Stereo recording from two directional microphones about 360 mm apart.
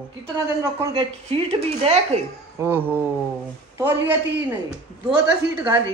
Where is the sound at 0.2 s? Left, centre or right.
Centre.